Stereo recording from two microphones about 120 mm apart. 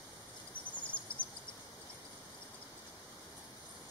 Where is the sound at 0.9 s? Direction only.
10° left (ahead or behind).